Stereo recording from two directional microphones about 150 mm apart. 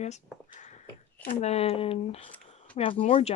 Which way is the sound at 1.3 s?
45° left (ahead or behind).